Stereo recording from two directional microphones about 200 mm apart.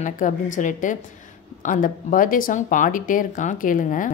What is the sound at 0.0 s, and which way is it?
Speech, 40° left (ahead or behind).